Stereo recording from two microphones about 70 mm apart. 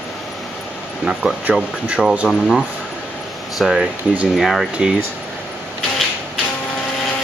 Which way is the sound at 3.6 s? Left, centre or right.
Centre.